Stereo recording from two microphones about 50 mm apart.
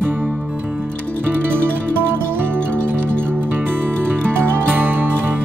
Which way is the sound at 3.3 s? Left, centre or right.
Right.